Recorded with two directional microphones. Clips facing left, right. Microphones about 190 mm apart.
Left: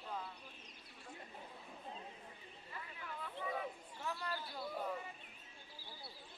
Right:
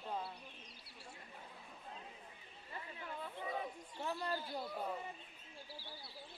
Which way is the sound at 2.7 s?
30° right (ahead or behind).